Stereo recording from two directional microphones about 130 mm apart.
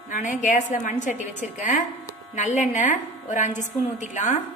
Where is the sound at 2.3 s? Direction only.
70° left (ahead or behind).